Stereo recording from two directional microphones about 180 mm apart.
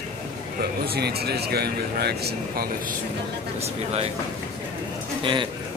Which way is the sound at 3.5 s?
35° right (ahead or behind).